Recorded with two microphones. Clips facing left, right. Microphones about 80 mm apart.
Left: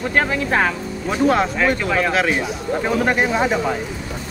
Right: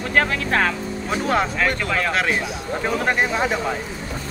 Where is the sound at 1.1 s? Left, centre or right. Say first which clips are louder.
Left 4 dB; centre.